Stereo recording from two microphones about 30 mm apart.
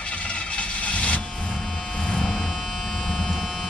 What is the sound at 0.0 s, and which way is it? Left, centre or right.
Vehicle, left.